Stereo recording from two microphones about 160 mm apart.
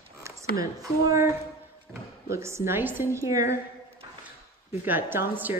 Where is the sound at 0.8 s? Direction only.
20° right (ahead or behind).